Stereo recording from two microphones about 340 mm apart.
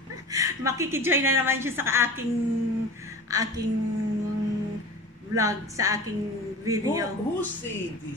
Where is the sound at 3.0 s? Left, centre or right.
Centre.